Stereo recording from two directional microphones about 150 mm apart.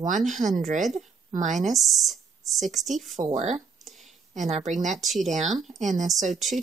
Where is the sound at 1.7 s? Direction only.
Centre (ahead or behind).